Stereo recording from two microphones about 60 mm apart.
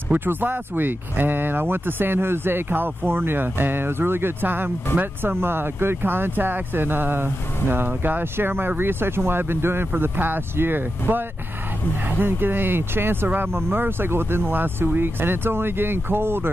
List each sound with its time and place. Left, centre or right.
0.1 s speech: right